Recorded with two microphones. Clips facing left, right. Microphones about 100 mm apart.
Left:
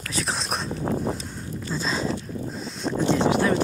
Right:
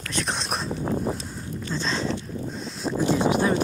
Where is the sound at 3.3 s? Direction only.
20° right (ahead or behind).